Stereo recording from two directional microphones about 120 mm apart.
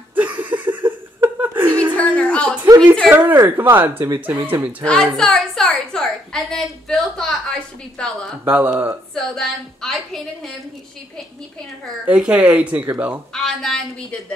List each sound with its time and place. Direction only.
0.1 s chuckle: 15° right (ahead or behind)
2.0 s a sound: 10° left (ahead or behind)
2.6 s a sound: 20° right (ahead or behind)
3.1 s speech: 15° right (ahead or behind)
4.1 s speech: 25° right (ahead or behind)
4.8 s a woman's voice: 5° left (ahead or behind)
8.5 s speech: 15° right (ahead or behind)
9.1 s a woman's voice: 5° left (ahead or behind)
12.1 s speech: 10° right (ahead or behind)
13.3 s a woman's voice: 5° left (ahead or behind)